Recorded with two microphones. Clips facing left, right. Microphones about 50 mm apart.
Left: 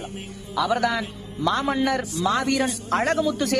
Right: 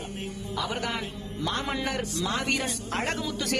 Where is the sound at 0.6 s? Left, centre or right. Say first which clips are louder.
Left 9 dB; left.